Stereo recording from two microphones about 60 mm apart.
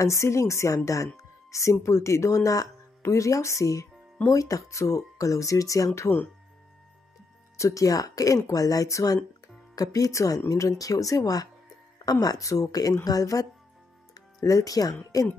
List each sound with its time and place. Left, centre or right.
0.0 s speech: left
3.0 s speech: left
7.5 s speech: left
14.4 s speech: left